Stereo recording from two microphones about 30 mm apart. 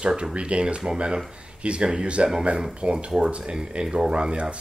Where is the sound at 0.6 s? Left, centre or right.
Right.